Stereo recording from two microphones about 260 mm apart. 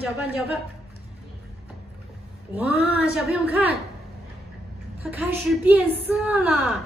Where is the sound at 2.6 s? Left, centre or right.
Centre.